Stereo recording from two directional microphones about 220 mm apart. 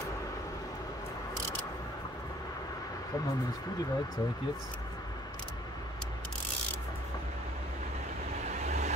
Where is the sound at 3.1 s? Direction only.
15° left (ahead or behind).